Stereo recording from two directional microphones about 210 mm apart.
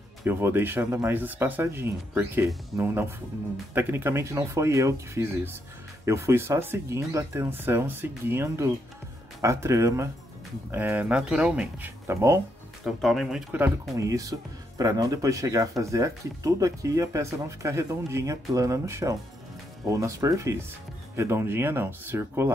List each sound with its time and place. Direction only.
0.2 s speech: 10° right (ahead or behind)
12.8 s speech: centre (ahead or behind)